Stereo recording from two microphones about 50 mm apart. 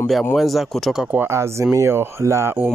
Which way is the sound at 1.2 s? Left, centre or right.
Right.